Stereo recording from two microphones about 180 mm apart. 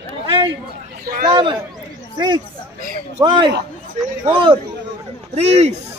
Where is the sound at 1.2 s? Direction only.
25° right (ahead or behind).